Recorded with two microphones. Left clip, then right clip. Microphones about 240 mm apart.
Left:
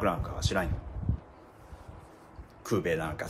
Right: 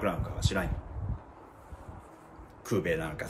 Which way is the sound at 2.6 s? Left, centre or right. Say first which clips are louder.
Left 1 dB; centre.